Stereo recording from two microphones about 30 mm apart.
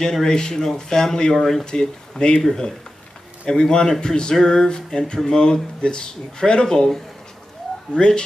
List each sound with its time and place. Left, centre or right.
0.1 s speech: left
1.7 s speech: left
3.4 s speech: left
7.9 s speech: left